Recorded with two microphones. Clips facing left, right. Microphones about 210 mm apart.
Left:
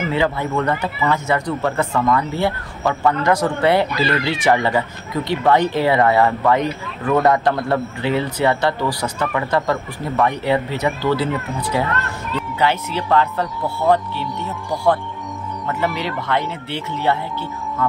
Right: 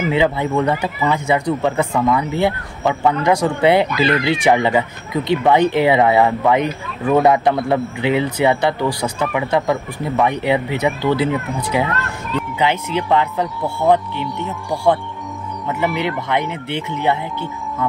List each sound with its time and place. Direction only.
0.1 s speech: 15° right (ahead or behind)